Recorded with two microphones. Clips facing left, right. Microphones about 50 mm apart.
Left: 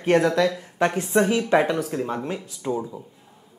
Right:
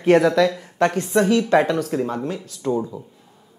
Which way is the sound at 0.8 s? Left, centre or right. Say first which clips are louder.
Right 2 dB; centre.